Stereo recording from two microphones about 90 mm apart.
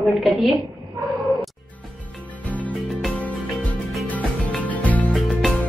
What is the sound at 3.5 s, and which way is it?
Music, centre (ahead or behind).